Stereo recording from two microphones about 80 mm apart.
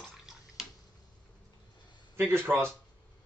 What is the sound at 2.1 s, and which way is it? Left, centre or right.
Speech, right.